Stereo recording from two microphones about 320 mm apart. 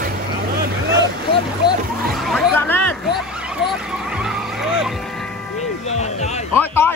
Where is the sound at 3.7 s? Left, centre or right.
Centre.